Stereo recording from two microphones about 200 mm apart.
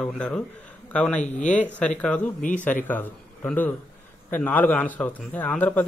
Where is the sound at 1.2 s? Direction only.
40° left (ahead or behind).